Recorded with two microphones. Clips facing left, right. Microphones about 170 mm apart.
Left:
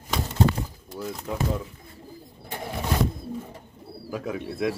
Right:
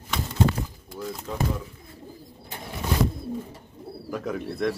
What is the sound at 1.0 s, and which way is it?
Speech, 5° left (ahead or behind).